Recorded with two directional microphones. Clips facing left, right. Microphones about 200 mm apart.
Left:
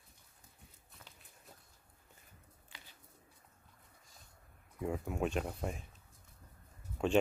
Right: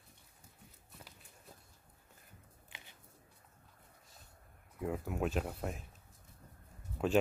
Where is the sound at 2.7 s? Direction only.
20° right (ahead or behind).